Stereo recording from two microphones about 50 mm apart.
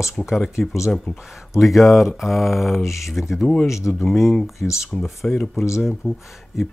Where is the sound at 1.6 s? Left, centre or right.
Centre.